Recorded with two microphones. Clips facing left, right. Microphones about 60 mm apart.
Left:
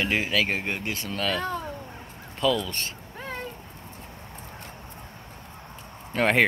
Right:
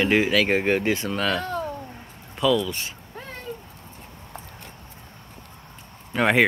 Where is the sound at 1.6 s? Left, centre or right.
Centre.